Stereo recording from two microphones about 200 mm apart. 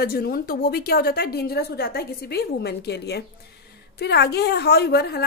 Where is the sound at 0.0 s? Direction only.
50° left (ahead or behind).